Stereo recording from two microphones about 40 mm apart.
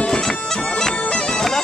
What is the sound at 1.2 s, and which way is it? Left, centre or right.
Bagpipes, centre.